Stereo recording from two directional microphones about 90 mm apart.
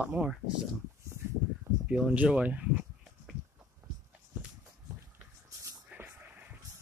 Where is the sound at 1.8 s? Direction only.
15° right (ahead or behind).